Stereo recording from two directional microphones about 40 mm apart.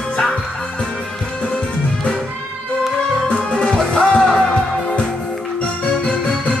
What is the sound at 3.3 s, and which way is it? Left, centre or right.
Music, left.